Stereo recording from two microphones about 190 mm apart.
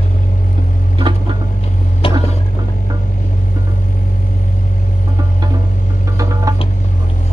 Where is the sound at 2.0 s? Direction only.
30° left (ahead or behind).